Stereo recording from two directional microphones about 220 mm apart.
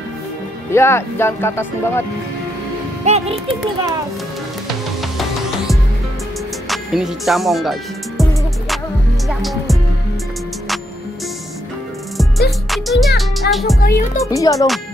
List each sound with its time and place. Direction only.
0.7 s speech: 10° left (ahead or behind)
3.1 s a child's voice: 25° right (ahead or behind)
6.7 s speech: centre (ahead or behind)
9.3 s music: centre (ahead or behind)
12.2 s music: centre (ahead or behind)
13.7 s speech: 40° left (ahead or behind)
14.1 s speech: 15° left (ahead or behind)